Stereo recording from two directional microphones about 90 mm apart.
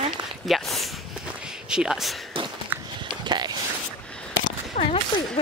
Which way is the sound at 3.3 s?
55° right (ahead or behind).